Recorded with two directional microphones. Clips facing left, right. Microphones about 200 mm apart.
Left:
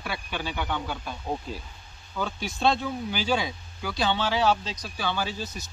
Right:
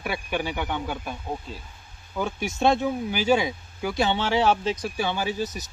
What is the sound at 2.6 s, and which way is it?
Speech, 20° right (ahead or behind).